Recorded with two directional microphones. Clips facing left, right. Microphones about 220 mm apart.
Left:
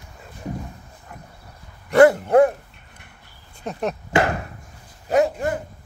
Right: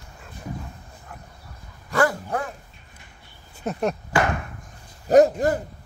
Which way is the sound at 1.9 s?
25° left (ahead or behind).